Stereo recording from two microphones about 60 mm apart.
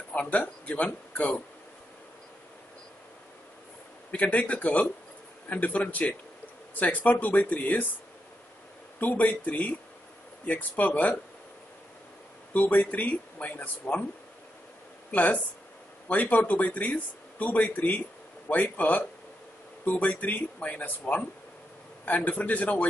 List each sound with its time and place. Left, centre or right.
0.1 s speech: left
4.1 s speech: left
9.0 s speech: left
12.5 s speech: left
15.0 s speech: left